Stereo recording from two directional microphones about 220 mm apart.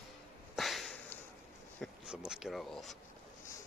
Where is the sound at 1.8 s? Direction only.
Centre (ahead or behind).